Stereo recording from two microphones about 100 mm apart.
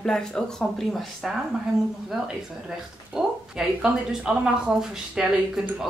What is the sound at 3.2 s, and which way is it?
Speech, 5° right (ahead or behind).